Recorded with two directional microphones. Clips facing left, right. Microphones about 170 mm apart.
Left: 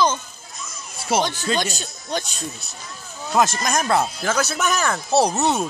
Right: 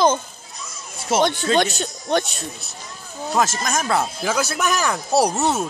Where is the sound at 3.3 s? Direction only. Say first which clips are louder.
Left 2 dB; 5° right (ahead or behind).